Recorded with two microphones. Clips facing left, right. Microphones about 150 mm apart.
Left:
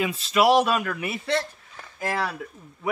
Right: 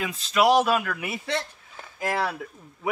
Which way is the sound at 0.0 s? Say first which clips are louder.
Left 1 dB; 5° left (ahead or behind).